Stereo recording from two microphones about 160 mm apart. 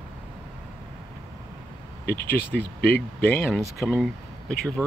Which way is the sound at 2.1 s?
75° left (ahead or behind).